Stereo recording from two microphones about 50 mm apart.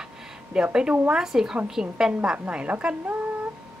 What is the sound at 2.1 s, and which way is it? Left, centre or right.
Speech, right.